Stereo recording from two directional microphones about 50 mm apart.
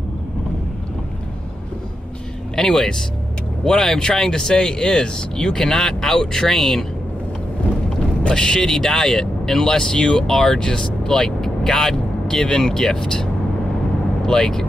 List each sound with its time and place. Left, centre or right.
2.5 s speech: centre
8.3 s speech: centre